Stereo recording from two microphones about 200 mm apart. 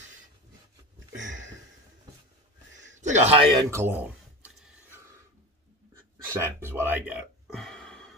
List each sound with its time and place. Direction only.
3.0 s a man's voice: 35° right (ahead or behind)
3.5 s a sound: 10° right (ahead or behind)
6.2 s speech: 15° right (ahead or behind)
7.4 s burping: centre (ahead or behind)